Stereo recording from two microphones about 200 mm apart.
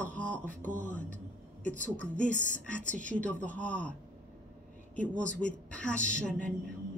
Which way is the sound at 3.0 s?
5° left (ahead or behind).